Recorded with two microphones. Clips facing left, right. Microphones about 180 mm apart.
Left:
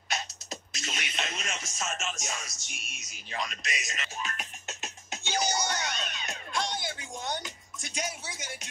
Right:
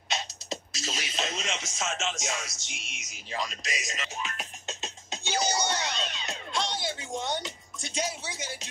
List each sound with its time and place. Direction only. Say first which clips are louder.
0.1 s music: right 2 dB; 30° right (ahead or behind)
1.4 s speech: right 3 dB; 90° right
2.9 s speech: right 3 dB; 20° right (ahead or behind)
5.4 s music: right 2 dB; 25° right (ahead or behind)